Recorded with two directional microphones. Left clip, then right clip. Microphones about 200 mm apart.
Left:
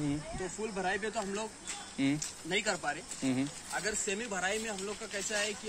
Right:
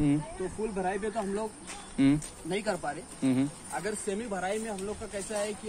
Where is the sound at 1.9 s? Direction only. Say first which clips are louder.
Right 7 dB; 10° right (ahead or behind).